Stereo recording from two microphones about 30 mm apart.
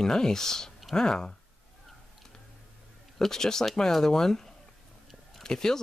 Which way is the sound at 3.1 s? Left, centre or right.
Centre.